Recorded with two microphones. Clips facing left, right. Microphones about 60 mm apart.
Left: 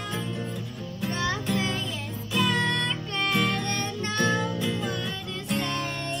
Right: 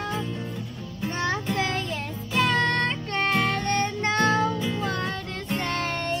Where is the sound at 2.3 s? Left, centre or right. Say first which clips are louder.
Right 3 dB; right.